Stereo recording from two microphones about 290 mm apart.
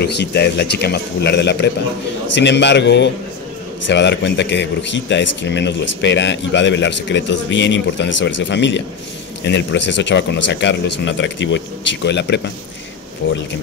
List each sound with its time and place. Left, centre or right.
0.0 s a man's voice: left